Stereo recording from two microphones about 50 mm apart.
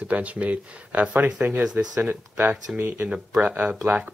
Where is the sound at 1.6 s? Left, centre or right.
Centre.